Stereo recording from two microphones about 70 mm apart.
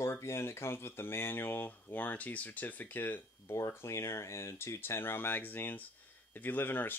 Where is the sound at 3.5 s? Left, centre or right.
Left.